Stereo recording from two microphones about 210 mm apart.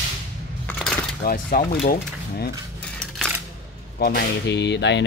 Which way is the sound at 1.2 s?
40° left (ahead or behind).